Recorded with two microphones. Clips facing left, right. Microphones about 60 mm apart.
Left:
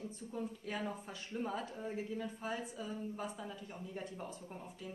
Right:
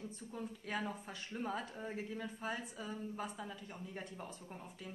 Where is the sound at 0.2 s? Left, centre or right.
Right.